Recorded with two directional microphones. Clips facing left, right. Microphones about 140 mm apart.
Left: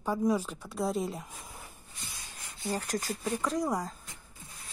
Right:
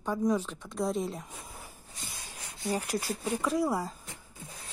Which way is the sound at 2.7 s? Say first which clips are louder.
Right 2 dB; 10° right (ahead or behind).